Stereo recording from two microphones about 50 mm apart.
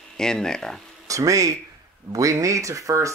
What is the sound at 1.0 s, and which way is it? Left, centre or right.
Speech, right.